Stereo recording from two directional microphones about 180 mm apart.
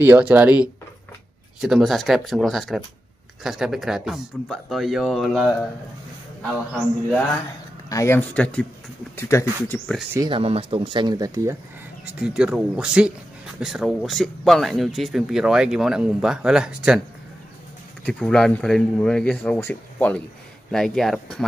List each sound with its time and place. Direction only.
0.0 s speech: 10° right (ahead or behind)
7.9 s speech: 15° left (ahead or behind)
10.1 s speech: 25° right (ahead or behind)
12.2 s speech: 5° right (ahead or behind)
18.0 s speech: 5° left (ahead or behind)